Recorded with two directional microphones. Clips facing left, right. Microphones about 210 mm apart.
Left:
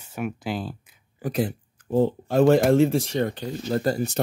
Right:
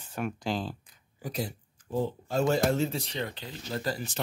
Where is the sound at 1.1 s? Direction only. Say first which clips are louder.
Left 9 dB; 55° left (ahead or behind).